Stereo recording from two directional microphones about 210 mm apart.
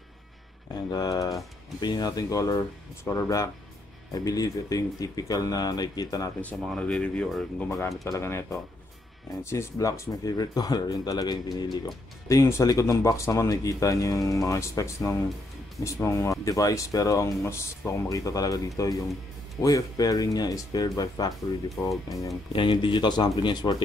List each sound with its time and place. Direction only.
0.7 s speech: 20° left (ahead or behind)
6.6 s speech: 5° left (ahead or behind); by 23.8 s 20° left (ahead or behind)